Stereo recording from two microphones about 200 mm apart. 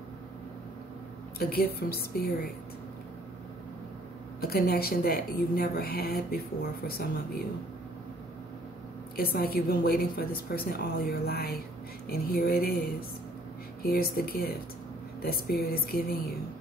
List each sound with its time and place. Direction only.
1.4 s a woman's voice: 50° left (ahead or behind)
4.4 s a woman's voice: 50° left (ahead or behind)
9.1 s a woman's voice: 50° left (ahead or behind)